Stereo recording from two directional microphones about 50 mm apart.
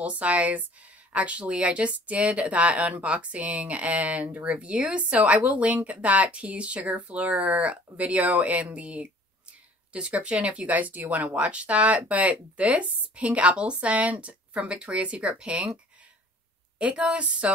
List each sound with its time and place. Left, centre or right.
0.0 s speech: right